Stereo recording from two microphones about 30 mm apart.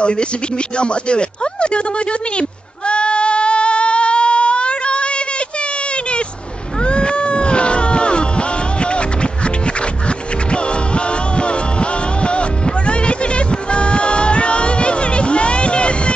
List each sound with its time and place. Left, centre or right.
0.0 s speech: left
2.9 s singing: left
6.8 s cat: left